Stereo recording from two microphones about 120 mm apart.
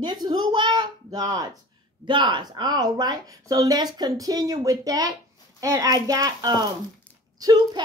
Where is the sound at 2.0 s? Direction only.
40° right (ahead or behind).